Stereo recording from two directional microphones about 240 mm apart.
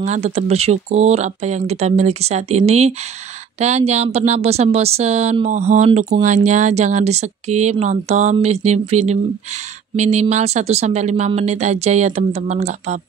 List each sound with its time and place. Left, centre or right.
0.0 s speech: right